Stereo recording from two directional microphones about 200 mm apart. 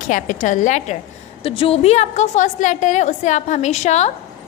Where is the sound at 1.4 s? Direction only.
25° left (ahead or behind).